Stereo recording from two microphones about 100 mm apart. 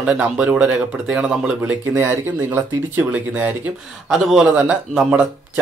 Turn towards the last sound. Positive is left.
turn(degrees=-15)  # may be behind; listen again after turning